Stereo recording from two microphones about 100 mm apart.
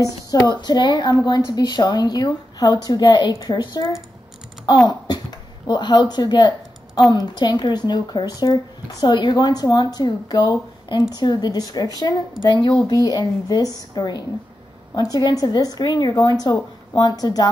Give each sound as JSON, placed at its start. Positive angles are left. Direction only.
{"t": 0.0, "sound": "speech", "side_deg": 40}
{"t": 4.8, "sound": "a sound", "side_deg": 45}
{"t": 5.7, "sound": "a woman's voice", "side_deg": 45}